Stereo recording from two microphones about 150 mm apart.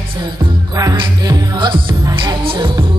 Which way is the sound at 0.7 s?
25° right (ahead or behind).